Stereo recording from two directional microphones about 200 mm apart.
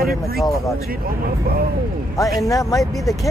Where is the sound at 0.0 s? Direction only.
50° right (ahead or behind).